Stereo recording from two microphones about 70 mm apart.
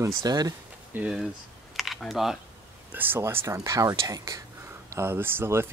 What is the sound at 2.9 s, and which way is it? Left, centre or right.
Speech, right.